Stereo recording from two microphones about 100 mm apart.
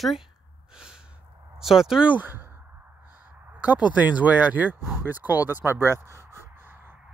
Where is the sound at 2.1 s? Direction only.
20° right (ahead or behind).